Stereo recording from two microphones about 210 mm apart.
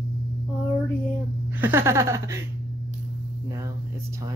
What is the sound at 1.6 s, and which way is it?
Speech, 10° right (ahead or behind).